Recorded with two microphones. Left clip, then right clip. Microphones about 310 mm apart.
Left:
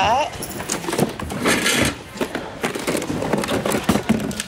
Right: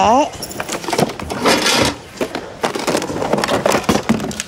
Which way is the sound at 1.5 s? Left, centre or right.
Right.